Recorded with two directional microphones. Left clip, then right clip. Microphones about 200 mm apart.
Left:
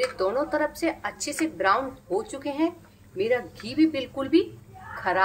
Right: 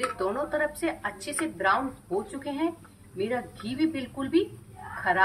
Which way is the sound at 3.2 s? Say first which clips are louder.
Left 5 dB; 40° left (ahead or behind).